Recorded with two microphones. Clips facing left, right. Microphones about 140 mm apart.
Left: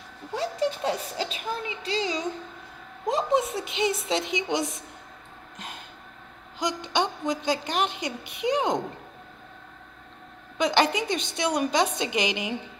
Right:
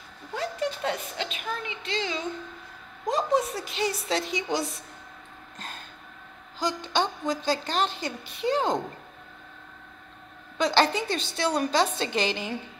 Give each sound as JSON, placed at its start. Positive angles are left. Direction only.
{"t": 0.3, "sound": "a woman's voice", "side_deg": 30}
{"t": 5.6, "sound": "a sound", "side_deg": 15}
{"t": 6.6, "sound": "a woman's voice", "side_deg": 20}
{"t": 10.6, "sound": "a woman's voice", "side_deg": 15}